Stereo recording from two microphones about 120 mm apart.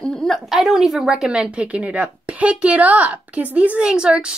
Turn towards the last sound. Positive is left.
turn(degrees=-10)  # may be behind; listen again after turning